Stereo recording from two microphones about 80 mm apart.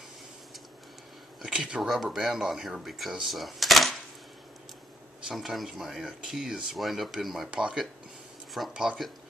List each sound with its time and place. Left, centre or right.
1.4 s speech: centre
5.3 s speech: centre
7.5 s speech: centre